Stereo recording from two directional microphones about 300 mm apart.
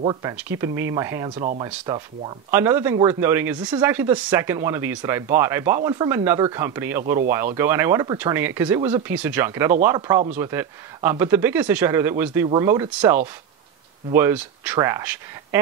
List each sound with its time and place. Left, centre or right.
0.0 s speech: centre